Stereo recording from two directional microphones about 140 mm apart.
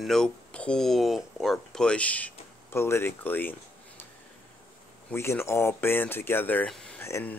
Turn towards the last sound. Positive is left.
turn(degrees=20)  # may be behind; listen again after turning